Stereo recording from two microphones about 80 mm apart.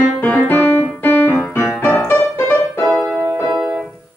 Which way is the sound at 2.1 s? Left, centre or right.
Left.